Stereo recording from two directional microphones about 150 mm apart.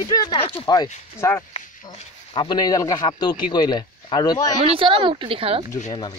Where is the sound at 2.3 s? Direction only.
30° left (ahead or behind).